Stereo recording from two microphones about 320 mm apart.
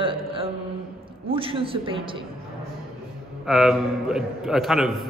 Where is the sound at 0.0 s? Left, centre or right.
Centre.